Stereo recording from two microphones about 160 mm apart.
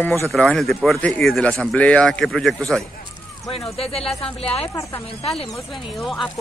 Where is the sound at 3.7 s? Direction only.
40° left (ahead or behind).